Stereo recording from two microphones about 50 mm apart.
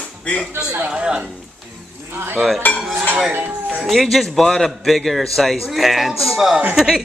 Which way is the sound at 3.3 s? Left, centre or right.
Right.